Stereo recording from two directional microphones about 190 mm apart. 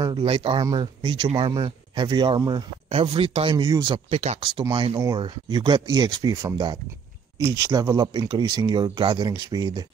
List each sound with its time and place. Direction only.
0.0 s speech: 25° right (ahead or behind)
4.1 s speech: 35° right (ahead or behind)
4.6 s speech: 25° right (ahead or behind)